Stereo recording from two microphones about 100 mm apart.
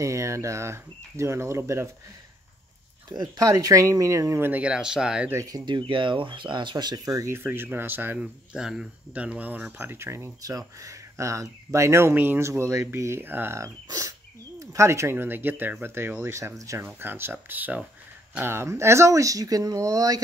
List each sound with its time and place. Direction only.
0.0 s speech: 30° right (ahead or behind)
3.1 s speech: 40° right (ahead or behind)
4.5 s speech: 10° right (ahead or behind)
5.3 s speech: 30° right (ahead or behind)
5.7 s speech: 55° right (ahead or behind); by 8.2 s 20° right (ahead or behind)
8.2 s speech: 5° right (ahead or behind); by 13.7 s 25° right (ahead or behind)
13.8 s speech: 35° right (ahead or behind)